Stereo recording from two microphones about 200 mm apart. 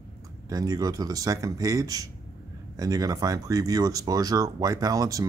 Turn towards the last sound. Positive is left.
turn(degrees=-15)  # may be behind; listen again after turning